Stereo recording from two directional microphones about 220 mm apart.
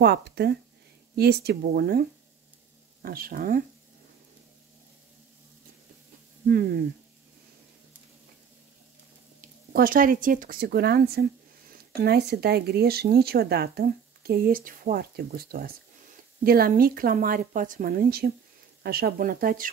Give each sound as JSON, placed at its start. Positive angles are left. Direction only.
{"t": 0.0, "sound": "a woman's voice", "side_deg": -45}
{"t": 6.4, "sound": "speech", "side_deg": -45}
{"t": 9.4, "sound": "a woman's voice", "side_deg": -40}